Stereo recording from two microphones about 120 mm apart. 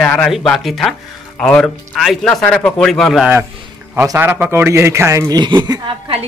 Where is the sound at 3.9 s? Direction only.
20° right (ahead or behind).